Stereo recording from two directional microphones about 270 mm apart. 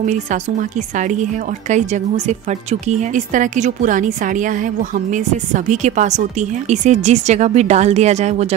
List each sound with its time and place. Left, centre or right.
0.0 s speech: right